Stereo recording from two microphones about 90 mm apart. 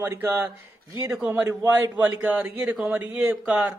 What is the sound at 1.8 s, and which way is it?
A man's voice, 20° right (ahead or behind).